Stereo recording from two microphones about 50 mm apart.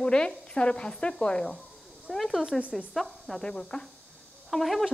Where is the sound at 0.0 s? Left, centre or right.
Centre.